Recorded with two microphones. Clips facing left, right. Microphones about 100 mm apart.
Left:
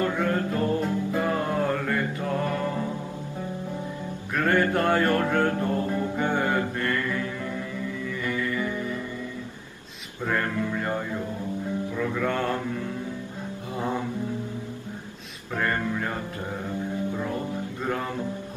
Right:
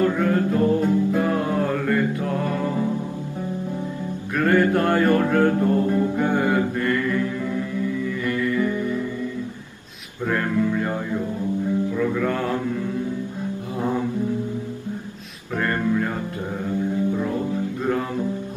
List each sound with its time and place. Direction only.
0.0 s music: centre (ahead or behind)
4.4 s music: centre (ahead or behind)
6.1 s mantra: centre (ahead or behind)
10.2 s music: centre (ahead or behind)
15.5 s music: centre (ahead or behind)
17.2 s music: 10° right (ahead or behind)